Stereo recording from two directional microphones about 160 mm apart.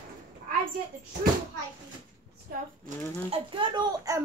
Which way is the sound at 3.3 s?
30° right (ahead or behind).